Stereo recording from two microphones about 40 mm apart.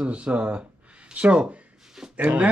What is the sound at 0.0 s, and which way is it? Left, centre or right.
Speech, right.